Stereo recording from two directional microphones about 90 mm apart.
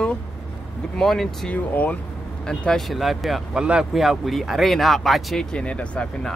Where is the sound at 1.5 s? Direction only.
15° left (ahead or behind).